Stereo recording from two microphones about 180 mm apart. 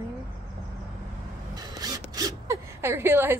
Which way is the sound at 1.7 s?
20° right (ahead or behind).